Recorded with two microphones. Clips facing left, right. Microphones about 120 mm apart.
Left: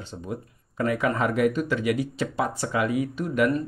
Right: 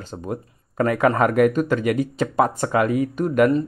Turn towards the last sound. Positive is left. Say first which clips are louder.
# right 6 dB
turn(degrees=-45)  # may be behind; listen again after turning